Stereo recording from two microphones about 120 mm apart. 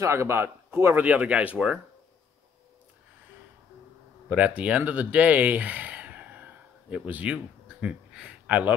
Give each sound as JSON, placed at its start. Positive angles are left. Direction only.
{"t": 0.0, "sound": "speech", "side_deg": -20}
{"t": 4.3, "sound": "speech", "side_deg": -10}